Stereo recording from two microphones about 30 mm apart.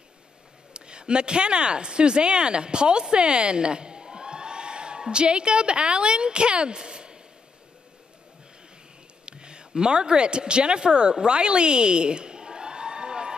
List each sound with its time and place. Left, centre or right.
0.7 s speech: right
9.2 s speech: right